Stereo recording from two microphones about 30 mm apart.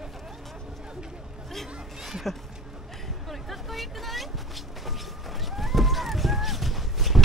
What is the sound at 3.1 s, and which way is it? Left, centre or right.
Vehicle, centre.